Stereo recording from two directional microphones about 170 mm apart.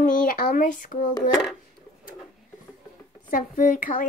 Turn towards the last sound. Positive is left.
turn(degrees=50)  # may be behind; listen again after turning